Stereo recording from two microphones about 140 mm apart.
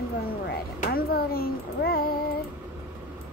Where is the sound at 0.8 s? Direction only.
90° left.